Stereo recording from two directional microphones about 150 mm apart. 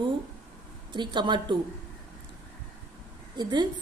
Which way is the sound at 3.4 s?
30° right (ahead or behind).